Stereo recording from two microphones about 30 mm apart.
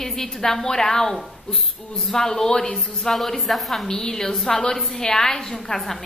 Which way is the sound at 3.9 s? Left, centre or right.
Centre.